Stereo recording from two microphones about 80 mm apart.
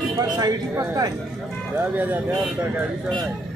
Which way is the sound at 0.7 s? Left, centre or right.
Right.